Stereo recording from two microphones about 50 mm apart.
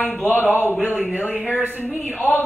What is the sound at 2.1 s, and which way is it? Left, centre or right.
Speech, left.